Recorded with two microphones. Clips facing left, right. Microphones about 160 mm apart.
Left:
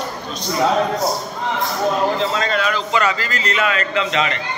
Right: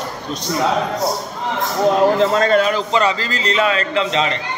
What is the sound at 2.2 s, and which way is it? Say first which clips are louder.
A man's voice: right 6 dB; 50° right (ahead or behind).